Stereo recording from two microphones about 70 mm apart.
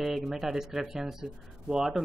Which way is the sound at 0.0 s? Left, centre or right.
Centre.